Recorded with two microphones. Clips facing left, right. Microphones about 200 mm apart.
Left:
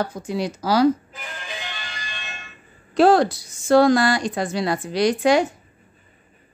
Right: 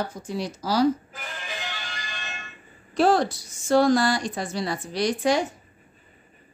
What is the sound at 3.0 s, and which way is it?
A woman's voice, 70° left (ahead or behind).